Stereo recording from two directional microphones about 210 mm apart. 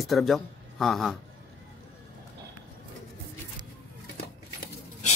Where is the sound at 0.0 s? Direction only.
Centre (ahead or behind).